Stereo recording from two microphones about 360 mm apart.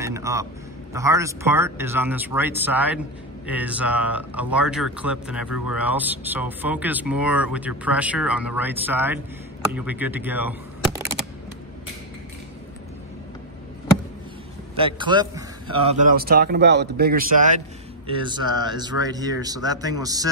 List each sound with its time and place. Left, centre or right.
0.0 s a man's voice: centre
14.8 s a man's voice: centre